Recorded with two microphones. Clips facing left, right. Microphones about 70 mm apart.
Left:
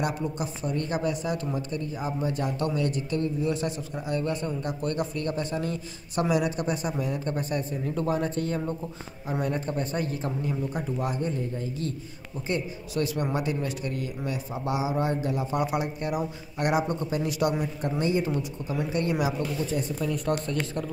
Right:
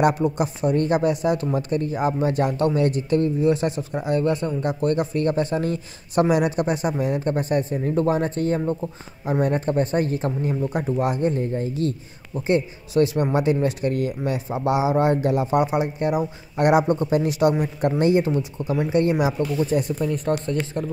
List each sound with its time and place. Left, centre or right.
0.0 s speech: right
16.0 s speech: right
19.6 s speech: right
20.1 s speech: right